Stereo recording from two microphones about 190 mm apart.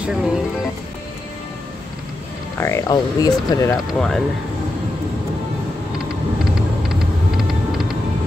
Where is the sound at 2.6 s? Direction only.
20° left (ahead or behind).